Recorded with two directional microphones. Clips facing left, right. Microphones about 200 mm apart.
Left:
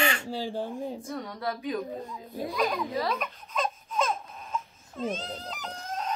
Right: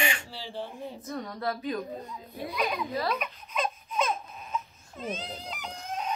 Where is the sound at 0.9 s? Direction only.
10° left (ahead or behind).